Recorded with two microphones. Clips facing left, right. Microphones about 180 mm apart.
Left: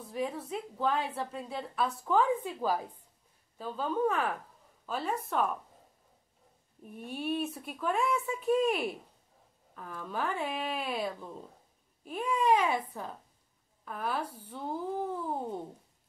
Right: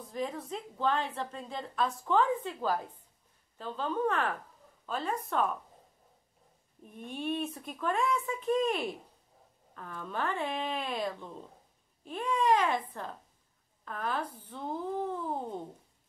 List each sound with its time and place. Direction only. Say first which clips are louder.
0.0 s a woman's voice: left 1 dB; 5° left (ahead or behind)
6.9 s a woman's voice: left 1 dB; 5° left (ahead or behind)
13.8 s a woman's voice: even; 10° left (ahead or behind)